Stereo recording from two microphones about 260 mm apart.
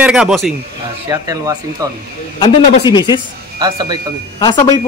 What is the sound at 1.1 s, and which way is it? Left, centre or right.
Speech, centre.